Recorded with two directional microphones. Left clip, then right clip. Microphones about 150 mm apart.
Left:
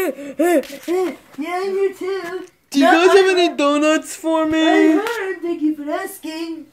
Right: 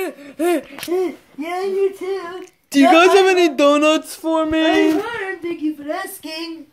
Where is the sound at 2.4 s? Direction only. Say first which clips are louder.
Right 1 dB; 55° right (ahead or behind).